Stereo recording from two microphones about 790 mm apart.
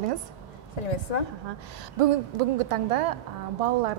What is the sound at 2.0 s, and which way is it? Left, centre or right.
A woman's voice, right.